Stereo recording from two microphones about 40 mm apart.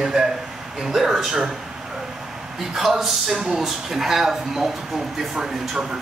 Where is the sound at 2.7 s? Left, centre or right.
Centre.